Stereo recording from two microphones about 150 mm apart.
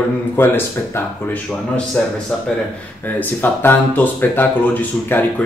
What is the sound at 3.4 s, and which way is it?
Speech, 15° left (ahead or behind).